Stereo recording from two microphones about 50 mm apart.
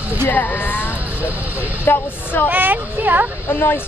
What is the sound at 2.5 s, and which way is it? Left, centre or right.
Speech, right.